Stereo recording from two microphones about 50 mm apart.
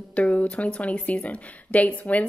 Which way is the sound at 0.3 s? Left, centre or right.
Left.